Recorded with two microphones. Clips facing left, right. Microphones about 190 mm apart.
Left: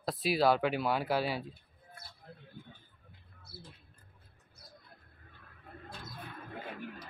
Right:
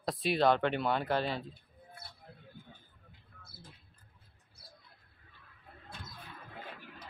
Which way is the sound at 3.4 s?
50° right (ahead or behind).